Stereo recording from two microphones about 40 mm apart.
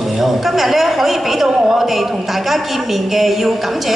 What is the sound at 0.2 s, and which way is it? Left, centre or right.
A man's voice, centre.